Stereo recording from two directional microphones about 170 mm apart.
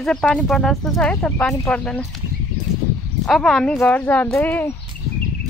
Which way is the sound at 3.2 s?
5° left (ahead or behind).